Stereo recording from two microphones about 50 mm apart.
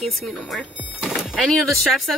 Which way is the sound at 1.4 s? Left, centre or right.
Centre.